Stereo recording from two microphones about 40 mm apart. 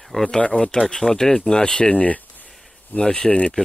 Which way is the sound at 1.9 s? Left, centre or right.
Left.